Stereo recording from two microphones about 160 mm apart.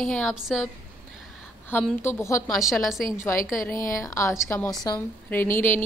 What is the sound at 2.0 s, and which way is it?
Speech, 15° left (ahead or behind).